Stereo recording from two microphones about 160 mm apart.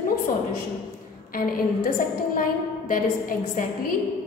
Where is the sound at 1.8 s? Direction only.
60° left (ahead or behind).